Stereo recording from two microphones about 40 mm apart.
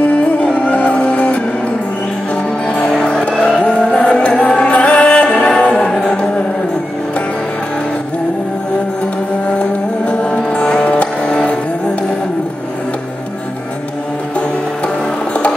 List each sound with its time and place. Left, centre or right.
0.0 s music: left
2.9 s music: centre
3.5 s music: left
9.5 s music: left